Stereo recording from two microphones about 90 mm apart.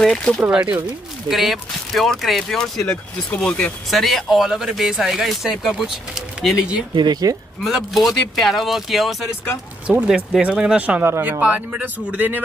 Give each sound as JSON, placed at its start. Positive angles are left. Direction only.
{"t": 0.0, "sound": "speech", "side_deg": 5}
{"t": 0.4, "sound": "speech", "side_deg": -10}
{"t": 3.9, "sound": "speech", "side_deg": 0}
{"t": 7.0, "sound": "speech", "side_deg": -50}
{"t": 7.6, "sound": "speech", "side_deg": 0}
{"t": 9.8, "sound": "speech", "side_deg": -10}
{"t": 11.0, "sound": "speech", "side_deg": -25}